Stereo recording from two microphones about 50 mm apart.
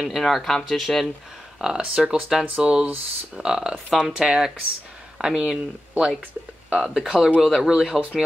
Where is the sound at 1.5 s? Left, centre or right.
Centre.